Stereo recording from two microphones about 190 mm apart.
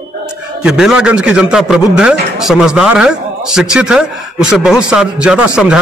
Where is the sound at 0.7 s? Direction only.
5° right (ahead or behind).